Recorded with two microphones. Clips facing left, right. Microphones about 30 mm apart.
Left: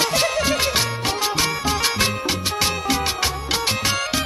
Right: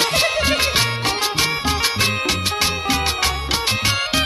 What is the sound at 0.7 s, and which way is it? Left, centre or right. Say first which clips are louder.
Music: right 3 dB; right.